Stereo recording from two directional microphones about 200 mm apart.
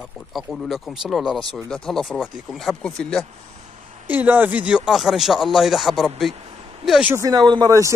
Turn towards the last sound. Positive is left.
turn(degrees=-15)  # may be behind; listen again after turning